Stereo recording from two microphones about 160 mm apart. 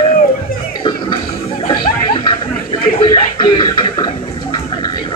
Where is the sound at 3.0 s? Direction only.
25° left (ahead or behind).